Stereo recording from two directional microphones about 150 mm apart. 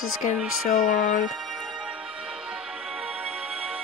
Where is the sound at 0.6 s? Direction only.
60° left (ahead or behind).